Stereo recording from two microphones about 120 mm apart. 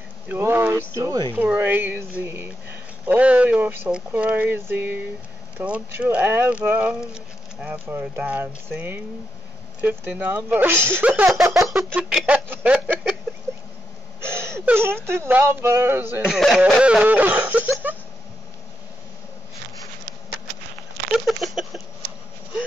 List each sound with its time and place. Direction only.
0.3 s speech: 20° right (ahead or behind)
11.5 s a sound: 5° right (ahead or behind)
14.2 s speech: 20° right (ahead or behind)
16.3 s speech: centre (ahead or behind)
16.8 s speech: 10° right (ahead or behind)
21.3 s a sound: centre (ahead or behind)